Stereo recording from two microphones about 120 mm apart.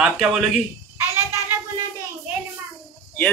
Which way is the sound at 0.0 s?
5° right (ahead or behind).